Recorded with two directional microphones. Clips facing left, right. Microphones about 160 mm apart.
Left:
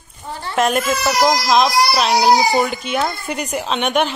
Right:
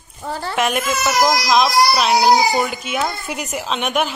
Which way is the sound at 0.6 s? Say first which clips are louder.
Left 3 dB; centre (ahead or behind).